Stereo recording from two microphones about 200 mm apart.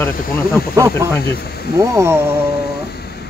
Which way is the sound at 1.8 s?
15° right (ahead or behind).